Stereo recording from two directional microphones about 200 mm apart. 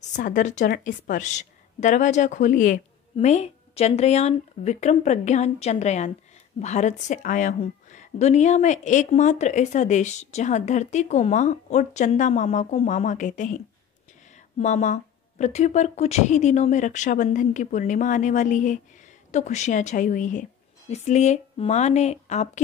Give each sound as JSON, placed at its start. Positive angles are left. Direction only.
{"t": 0.1, "sound": "a woman's voice", "side_deg": 40}
{"t": 14.6, "sound": "a woman's voice", "side_deg": 35}